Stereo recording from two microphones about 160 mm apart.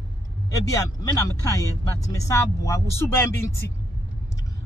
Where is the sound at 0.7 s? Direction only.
20° left (ahead or behind).